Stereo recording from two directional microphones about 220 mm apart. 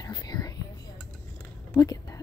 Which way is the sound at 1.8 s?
15° left (ahead or behind).